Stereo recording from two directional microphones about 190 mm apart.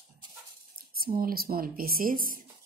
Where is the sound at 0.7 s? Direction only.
50° right (ahead or behind).